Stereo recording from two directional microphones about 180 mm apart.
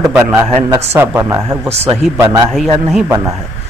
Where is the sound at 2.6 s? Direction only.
Centre (ahead or behind).